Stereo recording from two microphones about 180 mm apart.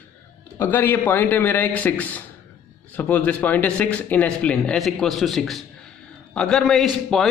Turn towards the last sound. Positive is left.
turn(degrees=0)  # may be behind; listen again after turning